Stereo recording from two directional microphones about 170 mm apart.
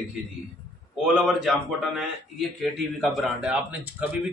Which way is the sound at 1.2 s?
5° right (ahead or behind).